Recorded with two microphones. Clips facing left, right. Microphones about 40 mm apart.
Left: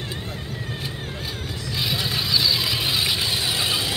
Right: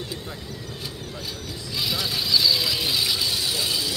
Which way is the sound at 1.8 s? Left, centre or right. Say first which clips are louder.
Left 1 dB; left.